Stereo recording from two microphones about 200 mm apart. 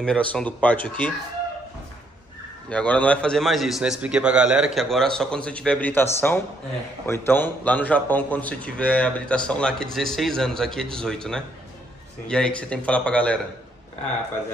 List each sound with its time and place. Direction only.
0.0 s speech: 5° left (ahead or behind)
2.7 s a man's voice: 5° left (ahead or behind)
7.1 s a man's voice: 10° left (ahead or behind)